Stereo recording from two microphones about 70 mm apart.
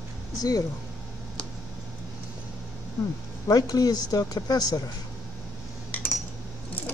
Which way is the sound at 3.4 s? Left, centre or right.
Left.